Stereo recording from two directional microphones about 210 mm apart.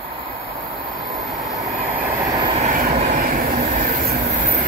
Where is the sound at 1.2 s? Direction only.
Centre (ahead or behind).